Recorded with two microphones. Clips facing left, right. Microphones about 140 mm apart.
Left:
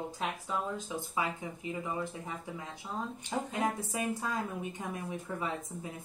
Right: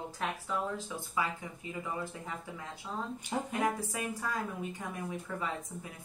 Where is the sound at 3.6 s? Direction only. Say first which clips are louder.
Left 2 dB; 20° left (ahead or behind).